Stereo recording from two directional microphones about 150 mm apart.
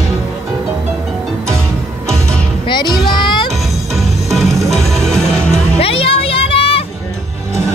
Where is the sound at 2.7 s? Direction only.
30° left (ahead or behind).